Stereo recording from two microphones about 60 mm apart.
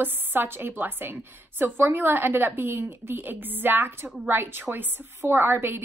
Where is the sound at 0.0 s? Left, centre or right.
Right.